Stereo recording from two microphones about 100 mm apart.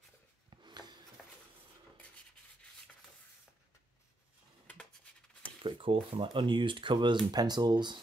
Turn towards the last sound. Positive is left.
turn(degrees=-45)  # may be behind; listen again after turning